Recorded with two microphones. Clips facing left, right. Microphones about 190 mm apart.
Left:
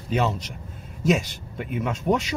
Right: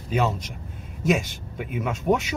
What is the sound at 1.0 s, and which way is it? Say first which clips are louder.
A man's voice: left 1 dB; centre (ahead or behind).